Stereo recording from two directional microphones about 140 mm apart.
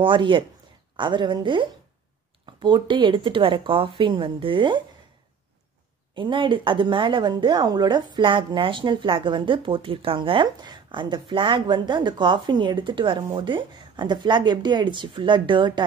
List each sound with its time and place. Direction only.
0.0 s a woman's voice: 35° right (ahead or behind)
6.1 s a woman's voice: 35° right (ahead or behind)